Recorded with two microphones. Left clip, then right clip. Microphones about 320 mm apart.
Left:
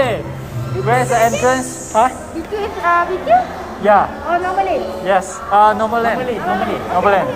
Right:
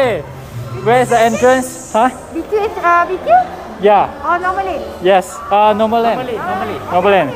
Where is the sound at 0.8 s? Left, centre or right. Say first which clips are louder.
Right 3 dB; right.